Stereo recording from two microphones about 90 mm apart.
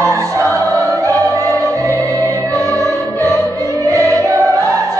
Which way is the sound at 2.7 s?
35° left (ahead or behind).